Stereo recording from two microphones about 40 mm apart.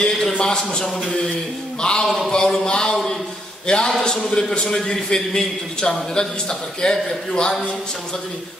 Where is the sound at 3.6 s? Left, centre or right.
Centre.